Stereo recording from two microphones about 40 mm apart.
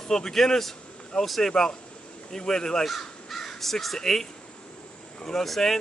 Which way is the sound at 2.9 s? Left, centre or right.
Centre.